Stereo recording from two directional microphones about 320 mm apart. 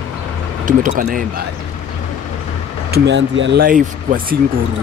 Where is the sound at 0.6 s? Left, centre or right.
Right.